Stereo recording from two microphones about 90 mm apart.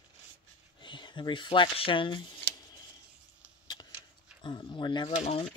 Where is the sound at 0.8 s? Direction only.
60° left (ahead or behind).